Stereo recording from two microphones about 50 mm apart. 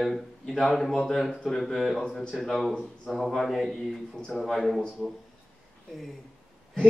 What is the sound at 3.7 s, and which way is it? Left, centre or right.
Speech, centre.